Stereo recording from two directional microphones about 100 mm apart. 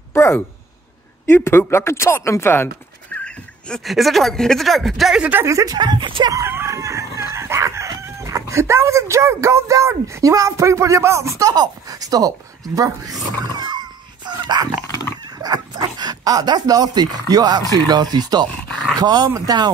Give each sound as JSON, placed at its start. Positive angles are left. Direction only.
{"t": 0.1, "sound": "a sound", "side_deg": 25}
{"t": 1.2, "sound": "speech", "side_deg": 25}
{"t": 3.2, "sound": "a sound", "side_deg": 10}
{"t": 3.8, "sound": "speech", "side_deg": 0}
{"t": 5.4, "sound": "speech", "side_deg": -30}
{"t": 5.8, "sound": "speech", "side_deg": -50}
{"t": 6.3, "sound": "chicken", "side_deg": -25}
{"t": 13.6, "sound": "dog", "side_deg": -45}
{"t": 15.2, "sound": "speech", "side_deg": -40}
{"t": 18.7, "sound": "dog", "side_deg": 10}
{"t": 18.9, "sound": "speech", "side_deg": -40}